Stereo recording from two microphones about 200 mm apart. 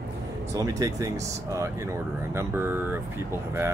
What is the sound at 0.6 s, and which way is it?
Speech, 15° right (ahead or behind).